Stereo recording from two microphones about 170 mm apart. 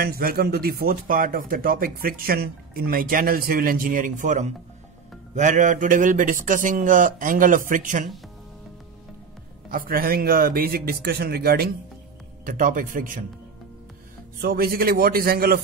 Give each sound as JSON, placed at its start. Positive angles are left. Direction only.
{"t": 0.0, "sound": "a man's voice", "side_deg": -60}
{"t": 9.7, "sound": "speech", "side_deg": -55}
{"t": 12.4, "sound": "a man's voice", "side_deg": -55}
{"t": 14.4, "sound": "speech", "side_deg": -65}